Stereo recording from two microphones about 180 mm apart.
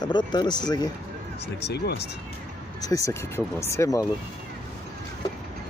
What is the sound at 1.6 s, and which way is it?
Speech, 65° left (ahead or behind).